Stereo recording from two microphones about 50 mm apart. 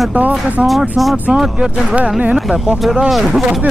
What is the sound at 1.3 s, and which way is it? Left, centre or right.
Speech, centre.